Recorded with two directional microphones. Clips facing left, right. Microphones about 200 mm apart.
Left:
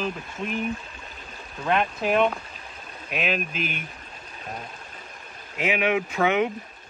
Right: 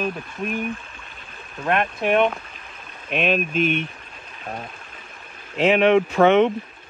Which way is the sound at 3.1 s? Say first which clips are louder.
Right 6 dB; 30° right (ahead or behind).